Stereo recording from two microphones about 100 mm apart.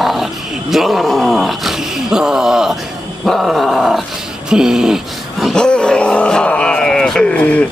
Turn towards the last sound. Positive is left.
turn(degrees=15)  # may be behind; listen again after turning